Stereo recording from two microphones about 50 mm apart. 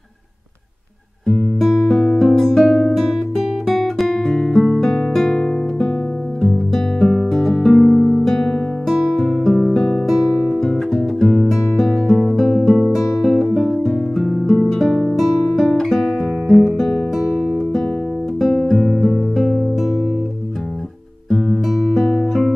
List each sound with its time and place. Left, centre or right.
1.2 s music: centre
3.6 s guitar: centre
4.6 s music: centre
9.8 s music: centre
10.0 s guitar: centre
11.0 s music: centre
15.8 s guitar: centre
19.1 s music: centre
21.3 s music: centre